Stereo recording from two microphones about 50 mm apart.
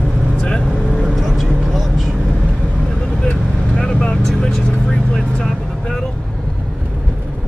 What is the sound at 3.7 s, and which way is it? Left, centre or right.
Vehicle, centre.